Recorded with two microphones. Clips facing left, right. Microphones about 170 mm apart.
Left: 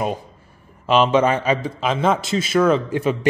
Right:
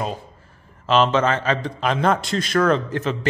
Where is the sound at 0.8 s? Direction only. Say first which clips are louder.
Left 2 dB; 10° left (ahead or behind).